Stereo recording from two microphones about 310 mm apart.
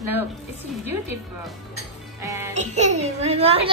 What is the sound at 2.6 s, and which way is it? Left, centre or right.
A child's voice, right.